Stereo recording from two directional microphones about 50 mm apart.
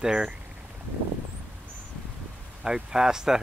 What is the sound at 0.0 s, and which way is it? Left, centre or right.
Speech, centre.